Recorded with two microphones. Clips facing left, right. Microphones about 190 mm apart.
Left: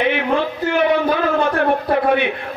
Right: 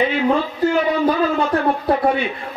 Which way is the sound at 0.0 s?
65° left (ahead or behind).